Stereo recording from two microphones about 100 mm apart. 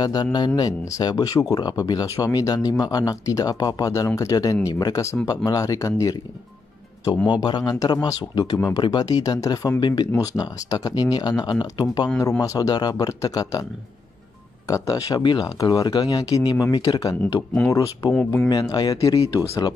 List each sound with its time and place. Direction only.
0.0 s speech: 40° left (ahead or behind)
7.4 s speech: 50° left (ahead or behind); by 9.8 s 35° left (ahead or behind)
9.8 s speech: 50° left (ahead or behind)
10.1 s speech: 35° left (ahead or behind)
12.2 s speech: 35° left (ahead or behind)
14.7 s speech: 35° left (ahead or behind)